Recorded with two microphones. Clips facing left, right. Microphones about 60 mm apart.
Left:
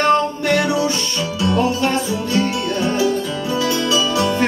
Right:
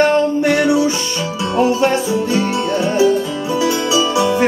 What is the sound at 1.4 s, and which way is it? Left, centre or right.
Music, right.